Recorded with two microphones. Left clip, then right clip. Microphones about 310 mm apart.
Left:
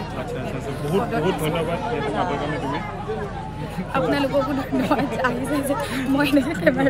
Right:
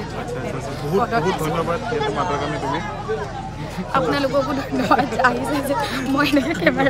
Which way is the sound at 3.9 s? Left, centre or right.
Centre.